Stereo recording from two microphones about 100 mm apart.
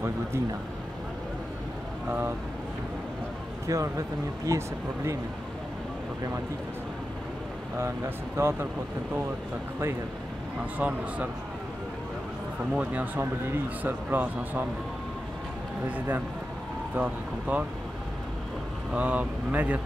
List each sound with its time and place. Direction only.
0.0 s speech: 25° right (ahead or behind)
2.0 s speech: 20° right (ahead or behind)
3.6 s speech: 35° right (ahead or behind)
8.4 s speech: 25° right (ahead or behind)
10.8 s speech: 15° right (ahead or behind)
12.7 s speech: 15° right (ahead or behind)
16.9 s speech: 15° right (ahead or behind)
18.9 s speech: 15° right (ahead or behind)